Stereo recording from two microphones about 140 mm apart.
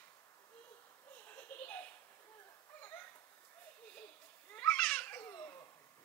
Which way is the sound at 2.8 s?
15° left (ahead or behind).